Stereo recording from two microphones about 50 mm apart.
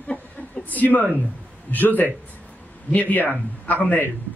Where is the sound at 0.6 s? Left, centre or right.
Left.